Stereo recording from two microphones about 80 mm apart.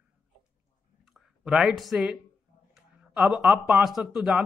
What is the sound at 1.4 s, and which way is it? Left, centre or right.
Speech, centre.